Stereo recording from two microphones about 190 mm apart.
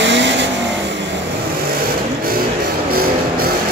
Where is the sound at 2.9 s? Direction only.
50° right (ahead or behind).